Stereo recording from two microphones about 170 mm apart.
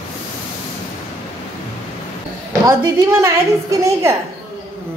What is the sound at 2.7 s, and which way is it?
A woman's voice, 15° right (ahead or behind).